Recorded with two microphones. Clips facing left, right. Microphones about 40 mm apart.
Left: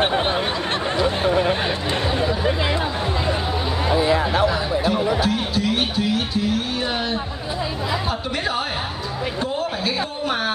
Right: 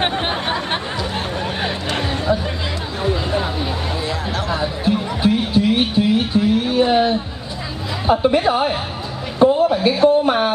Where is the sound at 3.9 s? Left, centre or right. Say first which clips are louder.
Left 5 dB; centre.